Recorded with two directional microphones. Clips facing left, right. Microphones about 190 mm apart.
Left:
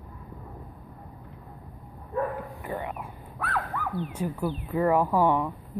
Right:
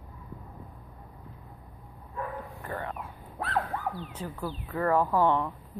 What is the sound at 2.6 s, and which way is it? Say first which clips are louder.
Speech: even; 15° left (ahead or behind).